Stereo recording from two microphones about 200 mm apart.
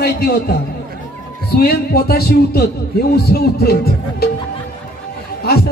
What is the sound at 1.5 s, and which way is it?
A man's voice, 50° left (ahead or behind).